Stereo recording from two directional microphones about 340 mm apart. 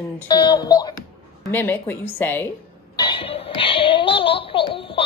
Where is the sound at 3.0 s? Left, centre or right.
Centre.